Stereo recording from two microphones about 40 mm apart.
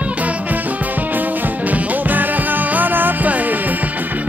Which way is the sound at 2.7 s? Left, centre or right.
Right.